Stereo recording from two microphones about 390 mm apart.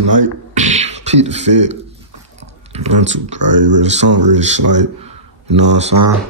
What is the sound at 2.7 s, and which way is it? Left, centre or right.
Speech, centre.